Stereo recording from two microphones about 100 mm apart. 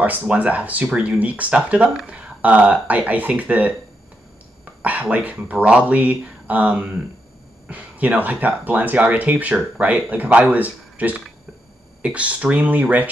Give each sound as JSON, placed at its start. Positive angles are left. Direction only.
{"t": 0.0, "sound": "speech", "side_deg": -15}
{"t": 4.8, "sound": "speech", "side_deg": -15}